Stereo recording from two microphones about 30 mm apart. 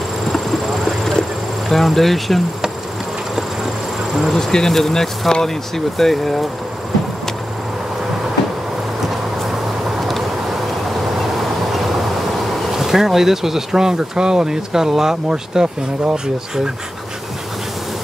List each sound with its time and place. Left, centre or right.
0.3 s clip-clop: centre
1.7 s speech: centre
4.4 s speech: centre
9.9 s vehicle: centre
12.7 s speech: centre